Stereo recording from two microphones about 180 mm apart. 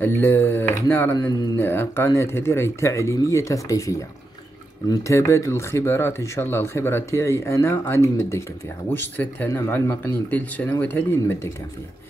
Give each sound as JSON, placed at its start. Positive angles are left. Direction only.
{"t": 0.0, "sound": "speech", "side_deg": 15}